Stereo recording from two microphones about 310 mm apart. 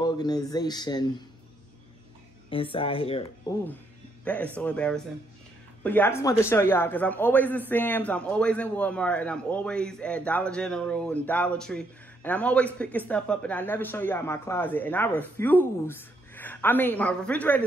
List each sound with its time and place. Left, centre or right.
0.0 s speech: centre
2.5 s speech: centre
4.2 s a man's voice: centre